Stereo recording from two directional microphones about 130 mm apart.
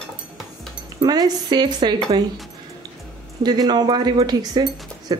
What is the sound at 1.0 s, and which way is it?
Speech, 35° right (ahead or behind).